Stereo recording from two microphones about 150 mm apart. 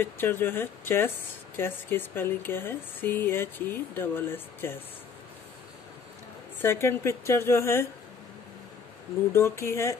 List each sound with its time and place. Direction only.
0.0 s speech: 15° left (ahead or behind)
6.6 s speech: 15° left (ahead or behind)
9.3 s speech: 15° left (ahead or behind)